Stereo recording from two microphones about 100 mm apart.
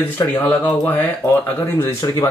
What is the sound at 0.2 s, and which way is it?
Speech, 40° left (ahead or behind).